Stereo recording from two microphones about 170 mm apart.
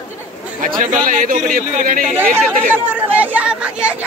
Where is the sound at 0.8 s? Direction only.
50° right (ahead or behind).